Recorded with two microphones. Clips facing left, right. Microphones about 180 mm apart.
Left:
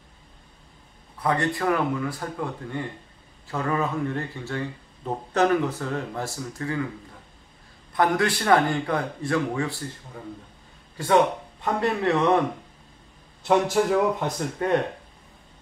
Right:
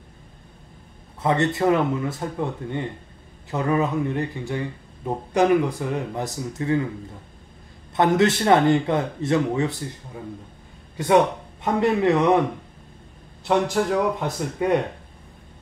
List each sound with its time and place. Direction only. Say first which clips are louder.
1.2 s speech: right 4 dB; 25° right (ahead or behind)
7.9 s speech: right 4 dB; 25° right (ahead or behind)
11.6 s speech: right 4 dB; 20° right (ahead or behind)
13.4 s speech: even; centre (ahead or behind)